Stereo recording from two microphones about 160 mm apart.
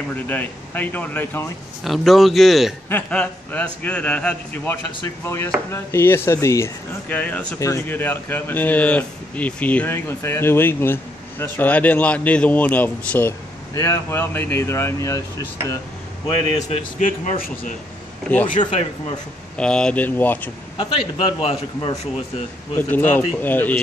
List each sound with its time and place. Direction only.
0.1 s speech: 10° left (ahead or behind)
1.9 s speech: centre (ahead or behind); by 15.2 s 20° left (ahead or behind)
16.6 s speech: 50° left (ahead or behind)
18.3 s speech: 10° left (ahead or behind)
18.7 s speech: 45° left (ahead or behind)
19.5 s speech: 5° left (ahead or behind)
20.7 s a man's voice: 30° left (ahead or behind)
22.8 s speech: 10° left (ahead or behind)